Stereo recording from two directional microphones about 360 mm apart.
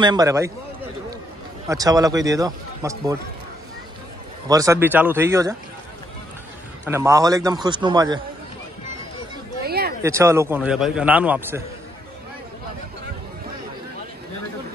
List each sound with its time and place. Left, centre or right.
0.0 s a man's voice: centre
1.7 s a man's voice: centre
4.5 s a man's voice: centre
6.9 s a man's voice: centre
9.6 s a sound: right
10.0 s a man's voice: centre